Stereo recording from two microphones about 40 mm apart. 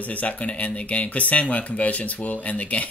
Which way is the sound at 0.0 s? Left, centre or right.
Left.